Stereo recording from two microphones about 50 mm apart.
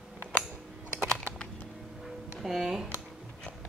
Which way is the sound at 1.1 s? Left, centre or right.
Centre.